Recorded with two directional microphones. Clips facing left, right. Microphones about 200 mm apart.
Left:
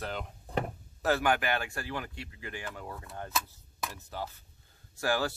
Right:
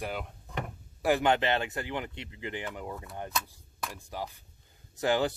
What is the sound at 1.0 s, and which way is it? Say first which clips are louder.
Speech: right 2 dB; 20° right (ahead or behind).